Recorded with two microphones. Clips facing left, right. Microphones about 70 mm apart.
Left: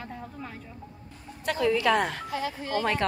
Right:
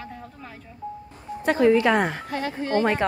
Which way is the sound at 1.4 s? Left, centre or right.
Right.